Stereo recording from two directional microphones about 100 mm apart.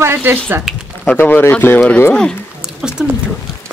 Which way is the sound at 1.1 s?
20° left (ahead or behind).